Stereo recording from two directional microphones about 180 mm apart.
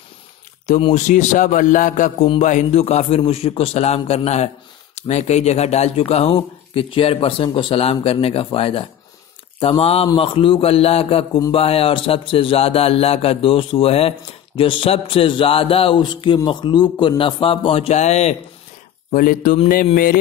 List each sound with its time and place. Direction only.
0.7 s a man's voice: 35° left (ahead or behind)
19.1 s a man's voice: 50° left (ahead or behind)